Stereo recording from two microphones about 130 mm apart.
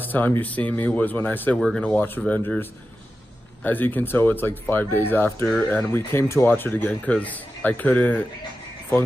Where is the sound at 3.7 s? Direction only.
15° left (ahead or behind).